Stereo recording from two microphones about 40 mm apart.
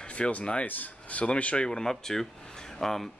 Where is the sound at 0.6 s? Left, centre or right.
Left.